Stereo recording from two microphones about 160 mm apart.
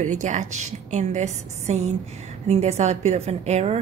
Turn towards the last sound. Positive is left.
turn(degrees=-45)  # may be behind; listen again after turning